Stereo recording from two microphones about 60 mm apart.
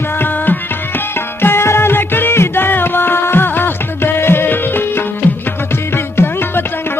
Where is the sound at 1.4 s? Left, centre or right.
Left.